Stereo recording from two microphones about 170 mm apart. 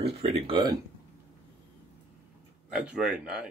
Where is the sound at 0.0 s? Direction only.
35° right (ahead or behind).